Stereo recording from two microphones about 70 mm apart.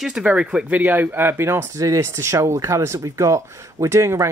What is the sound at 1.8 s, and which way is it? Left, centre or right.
Speech, right.